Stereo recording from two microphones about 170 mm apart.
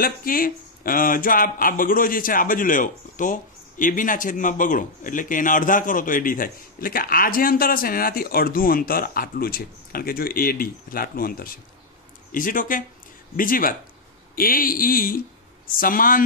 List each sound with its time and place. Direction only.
0.0 s speech: 55° left (ahead or behind)